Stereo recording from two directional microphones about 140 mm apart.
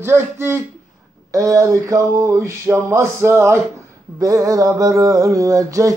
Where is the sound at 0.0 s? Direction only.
20° right (ahead or behind).